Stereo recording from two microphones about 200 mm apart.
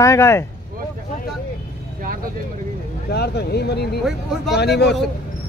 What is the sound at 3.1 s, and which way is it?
Speech, 55° left (ahead or behind).